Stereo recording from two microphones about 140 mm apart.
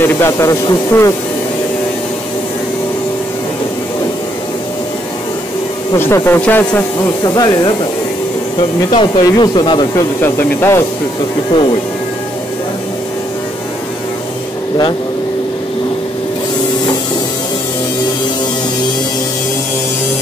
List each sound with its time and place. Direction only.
0.0 s speech: 15° left (ahead or behind)
5.9 s speech: 15° left (ahead or behind)
7.0 s speech: 30° left (ahead or behind)
10.2 s speech: 15° left (ahead or behind)